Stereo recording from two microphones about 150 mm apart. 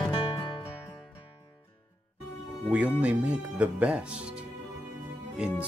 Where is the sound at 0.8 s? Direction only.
15° left (ahead or behind).